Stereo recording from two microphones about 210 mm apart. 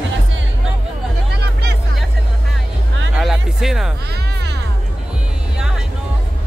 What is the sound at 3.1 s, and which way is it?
Music, centre (ahead or behind).